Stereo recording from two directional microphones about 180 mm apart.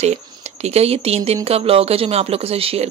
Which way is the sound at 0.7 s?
35° right (ahead or behind).